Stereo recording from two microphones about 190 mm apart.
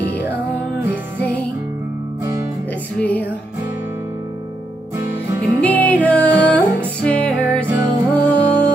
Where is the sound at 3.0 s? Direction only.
10° left (ahead or behind).